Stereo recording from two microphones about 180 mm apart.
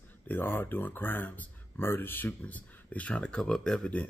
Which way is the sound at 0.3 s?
10° left (ahead or behind).